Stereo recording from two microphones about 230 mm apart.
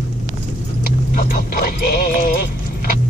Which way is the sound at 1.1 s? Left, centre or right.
Left.